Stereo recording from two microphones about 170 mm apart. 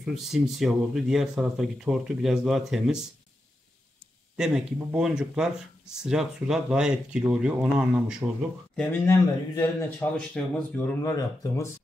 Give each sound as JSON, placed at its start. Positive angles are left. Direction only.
{"t": 0.0, "sound": "speech", "side_deg": 0}
{"t": 4.4, "sound": "speech", "side_deg": -5}
{"t": 8.7, "sound": "speech", "side_deg": 15}